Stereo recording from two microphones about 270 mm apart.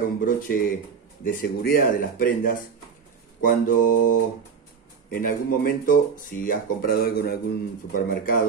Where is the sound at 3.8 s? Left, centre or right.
Left.